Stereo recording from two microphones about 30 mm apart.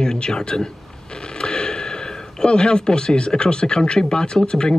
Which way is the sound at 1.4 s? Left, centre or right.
Left.